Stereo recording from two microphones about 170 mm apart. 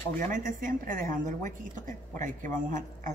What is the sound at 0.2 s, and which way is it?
A woman's voice, 50° right (ahead or behind).